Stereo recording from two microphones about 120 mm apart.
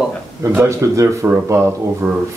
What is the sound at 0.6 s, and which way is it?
Speech, 25° right (ahead or behind).